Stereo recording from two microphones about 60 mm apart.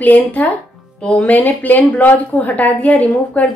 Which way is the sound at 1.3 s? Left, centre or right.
Left.